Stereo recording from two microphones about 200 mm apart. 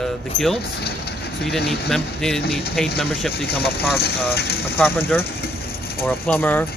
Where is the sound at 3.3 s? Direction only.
50° left (ahead or behind).